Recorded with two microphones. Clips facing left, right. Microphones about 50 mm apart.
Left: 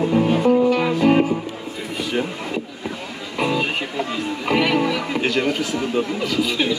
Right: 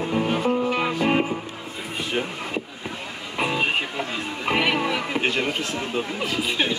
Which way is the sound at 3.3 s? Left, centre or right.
Centre.